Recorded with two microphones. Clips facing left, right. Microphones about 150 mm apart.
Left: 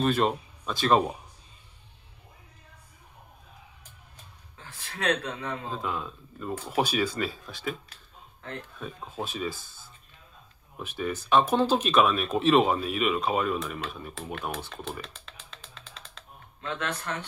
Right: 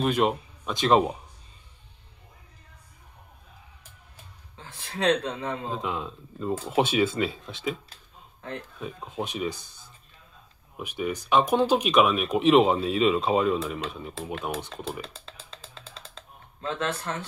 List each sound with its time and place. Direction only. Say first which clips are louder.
0.0 s speech: right 1 dB; 15° right (ahead or behind)
4.6 s speech: right 5 dB; 25° right (ahead or behind)
10.8 s speech: right 2 dB; 15° right (ahead or behind)
15.0 s a sound: right 3 dB; 30° right (ahead or behind)